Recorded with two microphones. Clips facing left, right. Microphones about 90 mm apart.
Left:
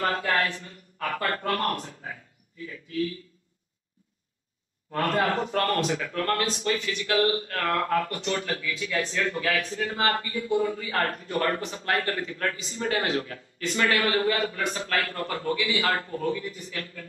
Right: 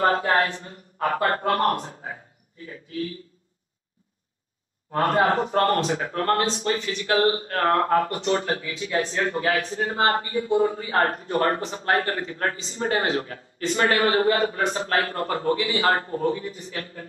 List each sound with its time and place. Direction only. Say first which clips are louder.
0.0 s speech: right 5 dB; 30° right (ahead or behind)
4.9 s speech: right 5 dB; 35° right (ahead or behind)